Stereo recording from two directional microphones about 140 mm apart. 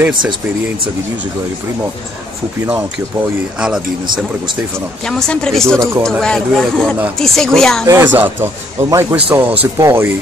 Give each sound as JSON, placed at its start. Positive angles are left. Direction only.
{"t": 5.0, "sound": "speech", "side_deg": 5}
{"t": 7.8, "sound": "speech", "side_deg": -20}